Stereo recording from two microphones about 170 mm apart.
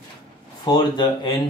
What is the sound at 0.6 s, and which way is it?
Speech, 25° left (ahead or behind).